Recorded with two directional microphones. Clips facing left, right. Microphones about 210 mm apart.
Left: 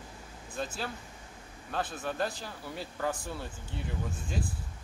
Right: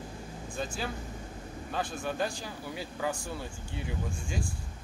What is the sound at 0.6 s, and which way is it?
Speech, centre (ahead or behind).